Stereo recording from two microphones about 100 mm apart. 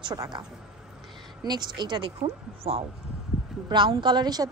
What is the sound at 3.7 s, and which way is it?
Speech, 50° right (ahead or behind).